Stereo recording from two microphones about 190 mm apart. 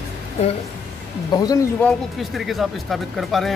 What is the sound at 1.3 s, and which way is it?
Speech, 20° left (ahead or behind).